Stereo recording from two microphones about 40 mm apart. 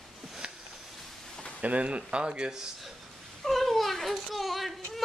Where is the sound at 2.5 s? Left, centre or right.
Centre.